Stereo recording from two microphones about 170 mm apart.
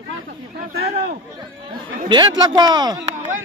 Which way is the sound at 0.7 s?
65° right (ahead or behind).